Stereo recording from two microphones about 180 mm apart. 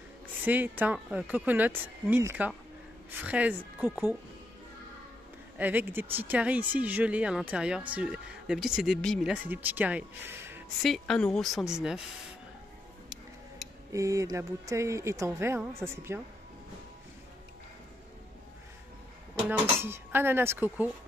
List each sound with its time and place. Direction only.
0.5 s speech: 10° right (ahead or behind)
5.6 s speech: 10° right (ahead or behind)
10.8 s a woman's voice: centre (ahead or behind)
13.9 s speech: 15° right (ahead or behind)
19.5 s speech: 10° right (ahead or behind)